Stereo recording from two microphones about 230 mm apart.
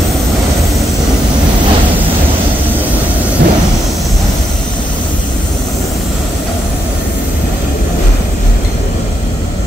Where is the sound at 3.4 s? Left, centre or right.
Right.